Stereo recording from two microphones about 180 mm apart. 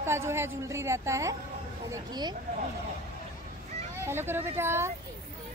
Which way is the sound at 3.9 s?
15° right (ahead or behind).